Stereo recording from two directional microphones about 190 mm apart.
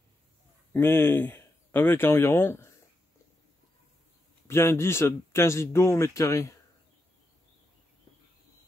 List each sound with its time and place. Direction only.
0.7 s speech: 10° left (ahead or behind)
4.5 s speech: 15° left (ahead or behind)